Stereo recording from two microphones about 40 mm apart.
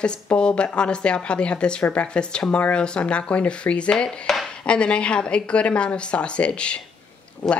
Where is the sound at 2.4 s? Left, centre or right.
Left.